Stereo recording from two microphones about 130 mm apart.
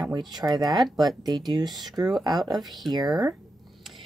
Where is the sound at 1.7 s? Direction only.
Centre (ahead or behind).